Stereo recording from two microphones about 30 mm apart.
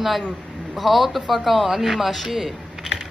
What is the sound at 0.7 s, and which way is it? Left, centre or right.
Speech, centre.